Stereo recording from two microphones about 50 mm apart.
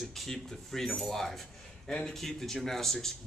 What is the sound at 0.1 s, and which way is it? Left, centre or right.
A man's voice, centre.